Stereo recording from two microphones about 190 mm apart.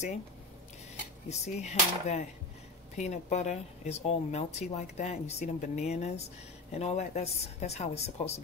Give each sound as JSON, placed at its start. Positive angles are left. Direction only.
{"t": 1.3, "sound": "speech", "side_deg": 35}